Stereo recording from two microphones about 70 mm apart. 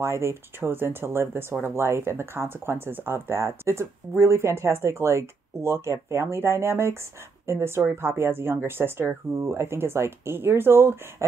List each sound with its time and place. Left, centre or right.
0.0 s speech: right